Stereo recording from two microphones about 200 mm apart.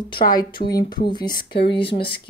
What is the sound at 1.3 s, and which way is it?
Speech, 50° left (ahead or behind).